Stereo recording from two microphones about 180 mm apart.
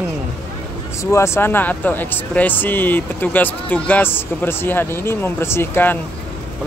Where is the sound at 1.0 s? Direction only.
15° left (ahead or behind).